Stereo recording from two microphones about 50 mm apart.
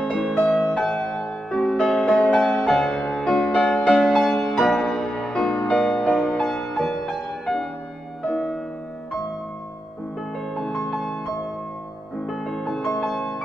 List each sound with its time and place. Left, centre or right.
0.2 s music: centre
0.7 s music: centre
1.5 s music: centre
2.0 s music: centre
3.7 s music: left
4.1 s music: centre
10.5 s music: centre
12.3 s music: centre